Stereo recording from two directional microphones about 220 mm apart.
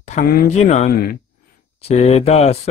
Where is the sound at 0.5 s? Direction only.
30° left (ahead or behind).